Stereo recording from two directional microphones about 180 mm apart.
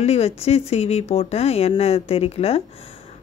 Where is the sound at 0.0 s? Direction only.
35° left (ahead or behind).